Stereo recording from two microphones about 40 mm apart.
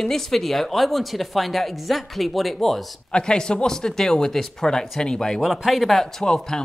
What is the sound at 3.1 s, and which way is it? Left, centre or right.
Speech, left.